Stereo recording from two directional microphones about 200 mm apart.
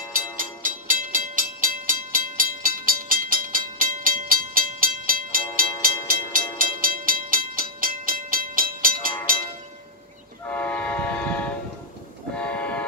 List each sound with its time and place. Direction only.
0.4 s train: 40° right (ahead or behind)
10.4 s train: 10° left (ahead or behind)